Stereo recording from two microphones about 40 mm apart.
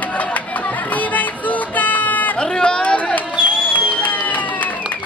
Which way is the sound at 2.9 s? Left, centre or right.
Left.